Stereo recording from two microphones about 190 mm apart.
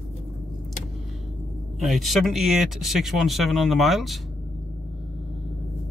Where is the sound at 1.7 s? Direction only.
Centre (ahead or behind).